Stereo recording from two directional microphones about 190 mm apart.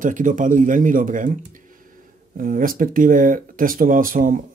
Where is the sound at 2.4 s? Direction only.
45° right (ahead or behind).